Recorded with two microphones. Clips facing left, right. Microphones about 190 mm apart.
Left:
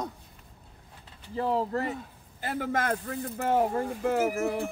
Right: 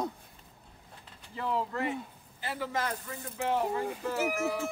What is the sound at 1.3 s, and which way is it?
A man's voice, 35° left (ahead or behind).